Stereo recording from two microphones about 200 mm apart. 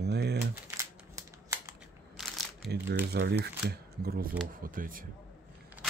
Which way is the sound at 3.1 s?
55° right (ahead or behind).